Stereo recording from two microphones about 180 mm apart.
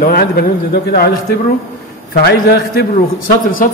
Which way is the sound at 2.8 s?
90° left.